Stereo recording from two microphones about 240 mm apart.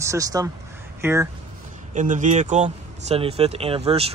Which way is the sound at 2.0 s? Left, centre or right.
Right.